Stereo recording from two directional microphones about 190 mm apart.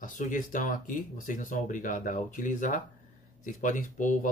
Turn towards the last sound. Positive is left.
turn(degrees=40)  # may be behind; listen again after turning